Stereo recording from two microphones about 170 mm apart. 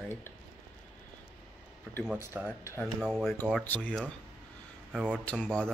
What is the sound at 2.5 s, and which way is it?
Speech, 15° left (ahead or behind).